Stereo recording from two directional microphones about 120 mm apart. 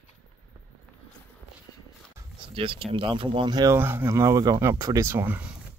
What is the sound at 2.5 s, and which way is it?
Speech, 50° right (ahead or behind).